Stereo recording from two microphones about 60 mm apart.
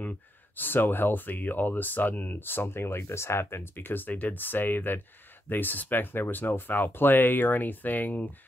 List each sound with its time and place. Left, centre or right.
0.6 s speech: left